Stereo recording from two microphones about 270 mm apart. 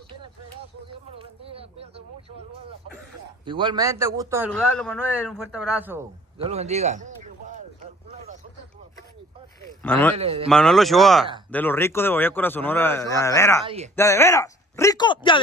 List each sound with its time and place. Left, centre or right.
1.1 s speech: right
3.4 s speech: centre
4.5 s a man's voice: centre
6.3 s a sound: right
9.8 s a man's voice: centre
10.1 s speech: right
10.5 s a man's voice: centre